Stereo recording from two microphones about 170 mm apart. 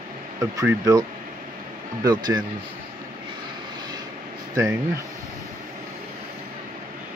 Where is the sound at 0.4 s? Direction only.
20° right (ahead or behind).